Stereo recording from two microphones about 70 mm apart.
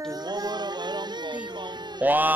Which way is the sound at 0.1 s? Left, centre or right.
Right.